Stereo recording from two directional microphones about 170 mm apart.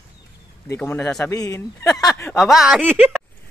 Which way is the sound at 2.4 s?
Centre (ahead or behind).